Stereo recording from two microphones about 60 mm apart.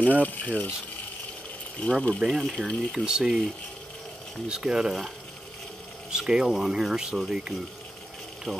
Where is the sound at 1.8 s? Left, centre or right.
Centre.